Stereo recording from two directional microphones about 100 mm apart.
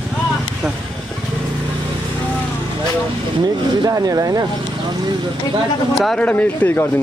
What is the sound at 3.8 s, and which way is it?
Speech, 40° right (ahead or behind).